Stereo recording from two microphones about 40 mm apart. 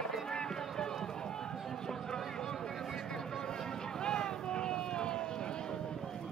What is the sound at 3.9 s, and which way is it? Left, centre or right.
Vehicle, centre.